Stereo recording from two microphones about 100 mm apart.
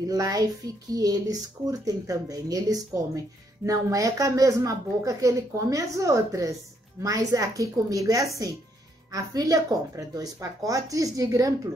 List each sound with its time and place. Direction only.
0.0 s speech: 35° right (ahead or behind)